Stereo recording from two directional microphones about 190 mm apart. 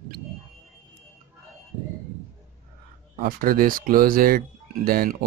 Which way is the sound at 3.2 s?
50° right (ahead or behind).